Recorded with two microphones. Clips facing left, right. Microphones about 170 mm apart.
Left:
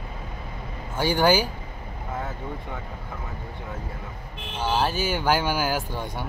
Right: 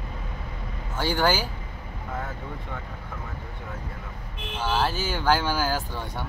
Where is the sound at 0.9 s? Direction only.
15° left (ahead or behind).